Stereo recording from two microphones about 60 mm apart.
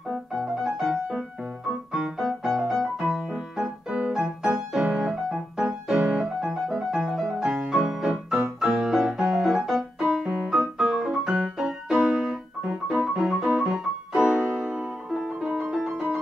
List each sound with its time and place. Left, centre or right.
0.1 s music: centre
4.9 s piano: centre
6.4 s music: centre
7.7 s keyboard: centre
8.5 s piano: centre
15.2 s music: centre
15.6 s music: centre